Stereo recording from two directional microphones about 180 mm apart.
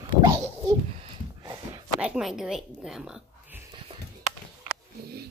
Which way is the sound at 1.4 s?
20° right (ahead or behind).